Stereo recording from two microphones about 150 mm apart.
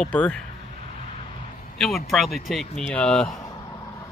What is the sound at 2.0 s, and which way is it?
Speech, centre (ahead or behind).